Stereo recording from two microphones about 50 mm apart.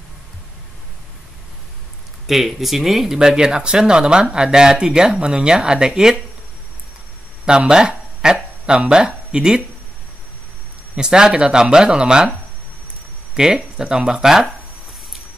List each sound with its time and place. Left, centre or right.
2.2 s speech: centre
7.4 s speech: centre
11.0 s speech: centre
13.4 s speech: centre